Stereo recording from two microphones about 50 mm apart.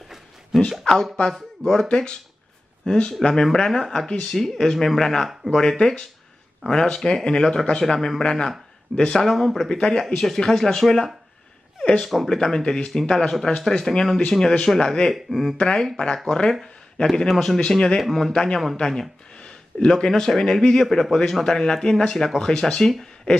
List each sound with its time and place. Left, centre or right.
0.7 s speech: centre
5.6 s speech: centre
9.2 s speech: centre
9.8 s speech: centre
12.0 s speech: centre
12.3 s speech: centre
15.5 s speech: centre
17.3 s speech: centre
18.3 s speech: centre